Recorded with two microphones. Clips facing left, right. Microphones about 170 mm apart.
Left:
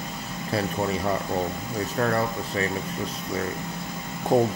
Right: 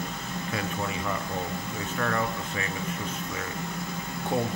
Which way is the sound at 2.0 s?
35° left (ahead or behind).